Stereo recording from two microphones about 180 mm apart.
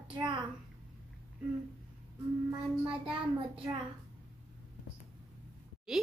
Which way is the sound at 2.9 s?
5° right (ahead or behind).